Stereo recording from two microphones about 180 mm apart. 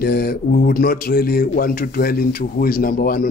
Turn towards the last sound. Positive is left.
turn(degrees=55)  # may be behind; listen again after turning